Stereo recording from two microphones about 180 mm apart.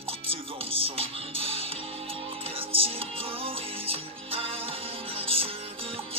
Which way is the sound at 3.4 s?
30° right (ahead or behind).